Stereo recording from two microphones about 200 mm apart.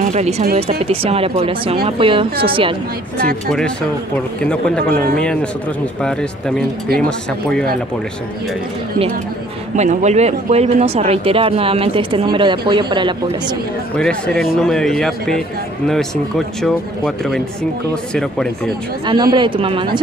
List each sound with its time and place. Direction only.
0.0 s speech: 35° right (ahead or behind)
3.4 s a man's voice: 5° left (ahead or behind)
7.0 s a man's voice: 5° left (ahead or behind)
9.8 s speech: 35° right (ahead or behind)
13.9 s a man's voice: 5° left (ahead or behind)
19.0 s speech: 20° right (ahead or behind)